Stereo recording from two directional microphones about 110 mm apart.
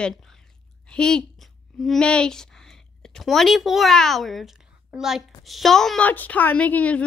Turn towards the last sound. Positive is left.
turn(degrees=15)  # may be behind; listen again after turning